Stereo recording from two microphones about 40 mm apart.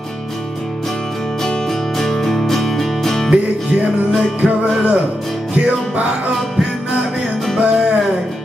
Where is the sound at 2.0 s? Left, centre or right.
Centre.